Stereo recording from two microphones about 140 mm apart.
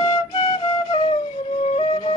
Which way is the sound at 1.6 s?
45° left (ahead or behind).